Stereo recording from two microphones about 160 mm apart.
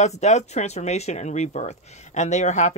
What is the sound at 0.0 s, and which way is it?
Speech, 45° left (ahead or behind).